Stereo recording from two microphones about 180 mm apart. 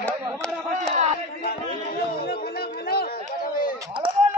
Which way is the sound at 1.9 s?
55° left (ahead or behind).